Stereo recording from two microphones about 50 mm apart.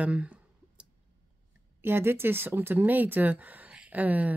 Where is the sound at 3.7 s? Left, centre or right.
Right.